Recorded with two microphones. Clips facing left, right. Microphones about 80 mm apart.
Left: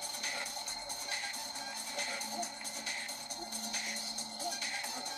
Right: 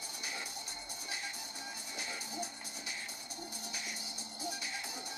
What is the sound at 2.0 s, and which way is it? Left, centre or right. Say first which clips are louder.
Music: left 2 dB; left.